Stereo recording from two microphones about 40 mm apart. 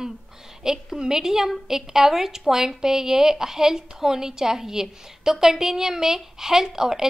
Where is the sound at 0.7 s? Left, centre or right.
Centre.